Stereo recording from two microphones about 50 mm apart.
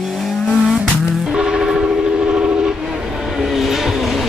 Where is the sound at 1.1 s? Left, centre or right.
Centre.